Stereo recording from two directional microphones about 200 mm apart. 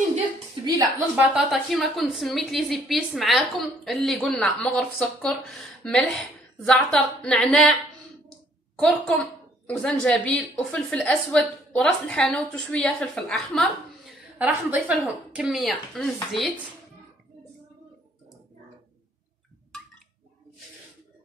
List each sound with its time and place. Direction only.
0.6 s a sound: 25° right (ahead or behind)
1.1 s a woman's voice: 5° right (ahead or behind)
8.7 s a woman's voice: 5° left (ahead or behind)